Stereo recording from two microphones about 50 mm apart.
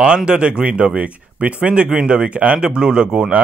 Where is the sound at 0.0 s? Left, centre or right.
Centre.